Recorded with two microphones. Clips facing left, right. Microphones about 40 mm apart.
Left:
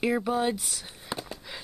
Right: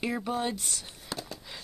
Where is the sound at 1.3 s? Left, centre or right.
Centre.